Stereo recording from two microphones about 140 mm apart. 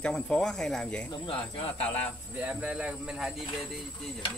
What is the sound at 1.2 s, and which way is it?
Cricket, 40° left (ahead or behind).